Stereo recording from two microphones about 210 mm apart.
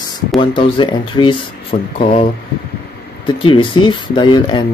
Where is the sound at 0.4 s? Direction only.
25° left (ahead or behind).